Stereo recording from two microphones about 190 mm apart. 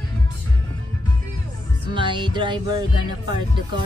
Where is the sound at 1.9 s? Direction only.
25° right (ahead or behind).